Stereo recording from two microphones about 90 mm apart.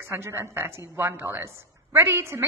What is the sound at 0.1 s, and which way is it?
A woman's voice, 30° right (ahead or behind).